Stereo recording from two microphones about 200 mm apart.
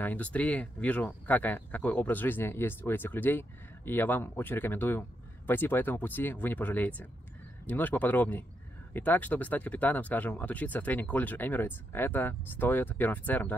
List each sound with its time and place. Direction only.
0.0 s speech: 10° left (ahead or behind)